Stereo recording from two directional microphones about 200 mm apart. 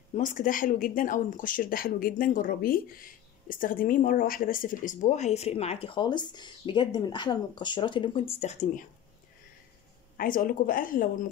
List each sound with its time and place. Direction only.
0.1 s speech: 40° left (ahead or behind)
10.1 s speech: 45° left (ahead or behind)